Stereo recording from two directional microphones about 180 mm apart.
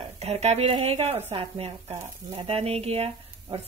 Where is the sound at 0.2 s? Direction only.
35° right (ahead or behind).